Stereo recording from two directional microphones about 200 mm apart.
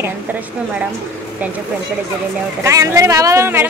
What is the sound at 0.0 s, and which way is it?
Speech, 10° right (ahead or behind).